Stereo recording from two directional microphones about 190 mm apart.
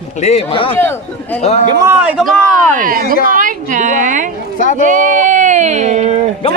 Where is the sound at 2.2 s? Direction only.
45° right (ahead or behind).